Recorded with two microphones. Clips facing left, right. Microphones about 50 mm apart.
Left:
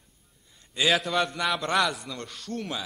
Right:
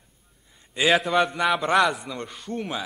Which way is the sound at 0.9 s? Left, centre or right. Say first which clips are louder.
Right 5 dB; centre.